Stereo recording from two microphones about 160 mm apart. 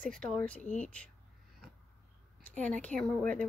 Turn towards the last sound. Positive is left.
turn(degrees=5)  # may be behind; listen again after turning